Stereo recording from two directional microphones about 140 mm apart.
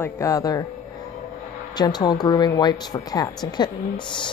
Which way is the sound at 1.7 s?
30° left (ahead or behind).